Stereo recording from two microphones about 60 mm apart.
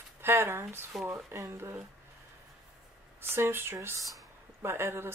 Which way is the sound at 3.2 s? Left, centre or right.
Right.